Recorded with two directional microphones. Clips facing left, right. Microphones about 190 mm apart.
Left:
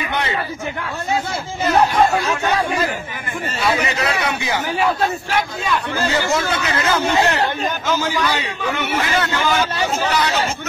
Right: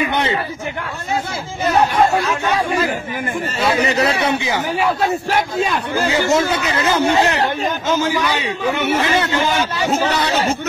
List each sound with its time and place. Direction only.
3.8 s a man's voice: 30° right (ahead or behind)
6.0 s a man's voice: 20° right (ahead or behind)